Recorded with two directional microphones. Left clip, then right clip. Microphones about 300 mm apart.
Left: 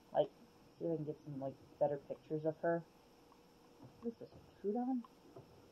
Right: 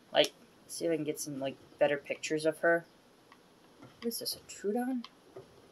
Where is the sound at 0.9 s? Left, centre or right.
Right.